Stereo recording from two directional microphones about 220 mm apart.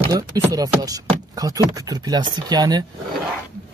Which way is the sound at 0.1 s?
15° right (ahead or behind).